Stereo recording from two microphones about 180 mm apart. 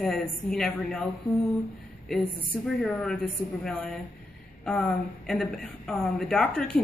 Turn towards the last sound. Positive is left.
turn(degrees=5)  # may be behind; listen again after turning